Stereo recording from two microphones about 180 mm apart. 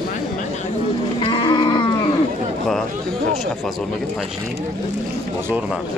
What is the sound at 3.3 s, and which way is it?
Speech, centre (ahead or behind).